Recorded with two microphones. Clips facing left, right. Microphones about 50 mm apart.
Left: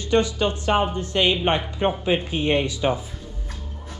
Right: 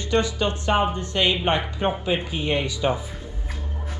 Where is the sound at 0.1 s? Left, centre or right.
Centre.